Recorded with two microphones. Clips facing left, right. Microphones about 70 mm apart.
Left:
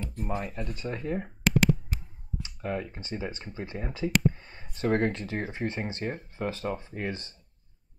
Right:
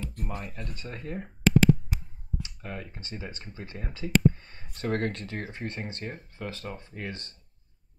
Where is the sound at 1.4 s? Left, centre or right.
Centre.